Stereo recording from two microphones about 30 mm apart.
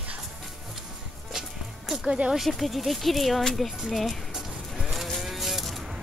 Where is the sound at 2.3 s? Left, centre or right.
Centre.